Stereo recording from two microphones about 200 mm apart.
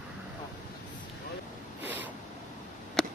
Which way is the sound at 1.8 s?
10° right (ahead or behind).